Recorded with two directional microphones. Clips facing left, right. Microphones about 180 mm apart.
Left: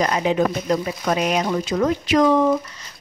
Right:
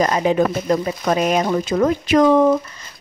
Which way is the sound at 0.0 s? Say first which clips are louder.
Right 3 dB; 45° right (ahead or behind).